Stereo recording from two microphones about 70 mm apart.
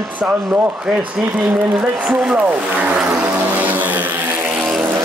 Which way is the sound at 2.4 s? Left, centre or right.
Right.